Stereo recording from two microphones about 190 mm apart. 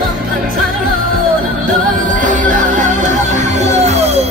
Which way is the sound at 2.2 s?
45° right (ahead or behind).